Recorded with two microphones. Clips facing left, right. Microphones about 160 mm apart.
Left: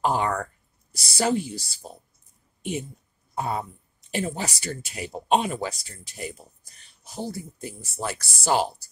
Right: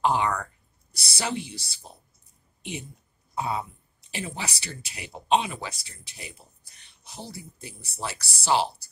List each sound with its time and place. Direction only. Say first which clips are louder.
0.0 s speech: even; 45° left (ahead or behind)
3.3 s speech: left 1 dB; 50° left (ahead or behind)